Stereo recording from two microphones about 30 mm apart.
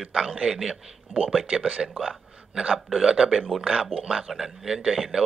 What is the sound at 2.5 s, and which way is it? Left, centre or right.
Speech, right.